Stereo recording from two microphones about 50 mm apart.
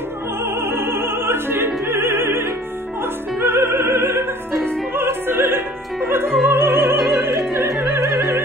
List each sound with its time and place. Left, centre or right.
0.6 s opera: right
6.4 s music: right
7.9 s opera: right